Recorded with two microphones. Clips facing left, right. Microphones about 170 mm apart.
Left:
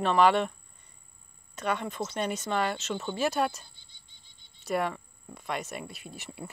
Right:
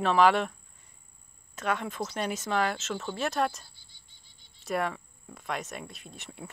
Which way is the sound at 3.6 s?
20° left (ahead or behind).